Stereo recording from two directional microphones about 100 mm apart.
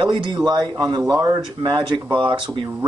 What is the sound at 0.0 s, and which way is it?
Speech, 50° right (ahead or behind).